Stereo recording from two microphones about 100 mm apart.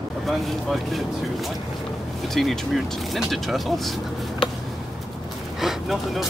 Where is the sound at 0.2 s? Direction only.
Centre (ahead or behind).